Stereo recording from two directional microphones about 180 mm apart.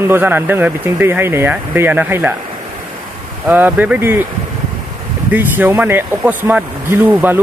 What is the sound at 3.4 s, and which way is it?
Speech, 10° right (ahead or behind).